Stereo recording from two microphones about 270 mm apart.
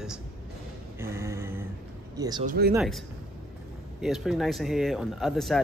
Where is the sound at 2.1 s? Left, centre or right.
Centre.